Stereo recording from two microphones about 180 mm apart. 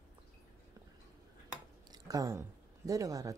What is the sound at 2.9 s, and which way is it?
Speech, 20° right (ahead or behind).